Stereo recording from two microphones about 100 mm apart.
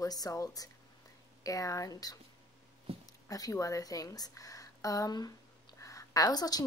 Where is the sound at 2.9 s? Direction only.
70° right (ahead or behind).